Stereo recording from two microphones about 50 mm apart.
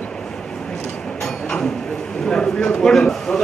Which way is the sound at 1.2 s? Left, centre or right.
Centre.